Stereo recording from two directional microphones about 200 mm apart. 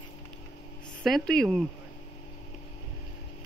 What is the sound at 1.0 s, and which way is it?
Speech, 5° left (ahead or behind).